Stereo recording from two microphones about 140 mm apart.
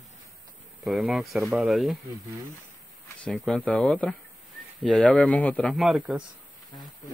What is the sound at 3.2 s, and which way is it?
Speech, 5° left (ahead or behind).